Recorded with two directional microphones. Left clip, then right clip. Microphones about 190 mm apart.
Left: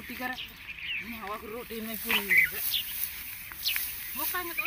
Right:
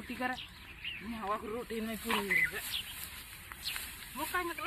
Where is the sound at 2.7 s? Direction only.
45° right (ahead or behind).